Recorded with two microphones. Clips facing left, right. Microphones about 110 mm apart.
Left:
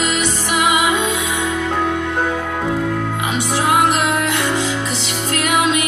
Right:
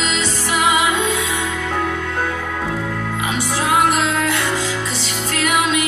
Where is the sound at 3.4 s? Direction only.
15° left (ahead or behind).